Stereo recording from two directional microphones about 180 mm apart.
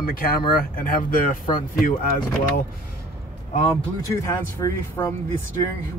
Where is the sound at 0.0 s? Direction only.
55° left (ahead or behind).